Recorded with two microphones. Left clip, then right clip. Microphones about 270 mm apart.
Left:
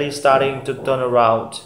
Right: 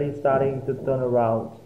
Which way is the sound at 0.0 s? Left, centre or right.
Centre.